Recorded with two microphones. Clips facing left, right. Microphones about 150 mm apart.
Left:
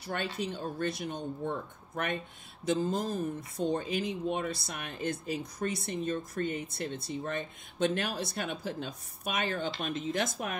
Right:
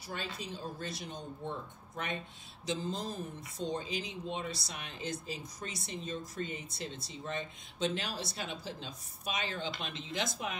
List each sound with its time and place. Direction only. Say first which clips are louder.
0.0 s speech: left 7 dB; 65° left (ahead or behind)